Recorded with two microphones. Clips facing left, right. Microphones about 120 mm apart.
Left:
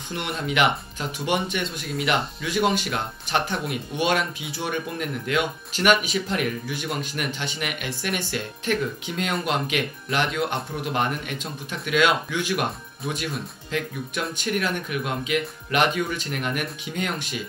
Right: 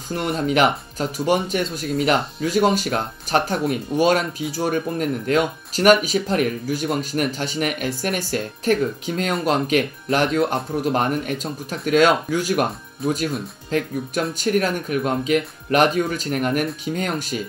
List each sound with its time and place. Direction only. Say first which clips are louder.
0.1 s speech: right 7 dB; 35° right (ahead or behind)
13.7 s speech: right 7 dB; 40° right (ahead or behind)